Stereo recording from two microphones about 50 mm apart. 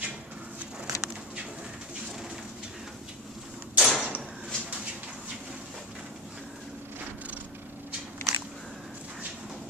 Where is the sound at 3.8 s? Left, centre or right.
Centre.